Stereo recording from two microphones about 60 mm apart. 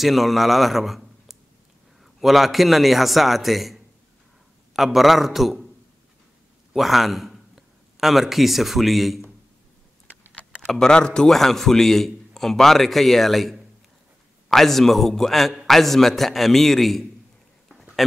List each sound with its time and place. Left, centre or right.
0.0 s a man's voice: centre
6.7 s a man's voice: centre
10.7 s a man's voice: centre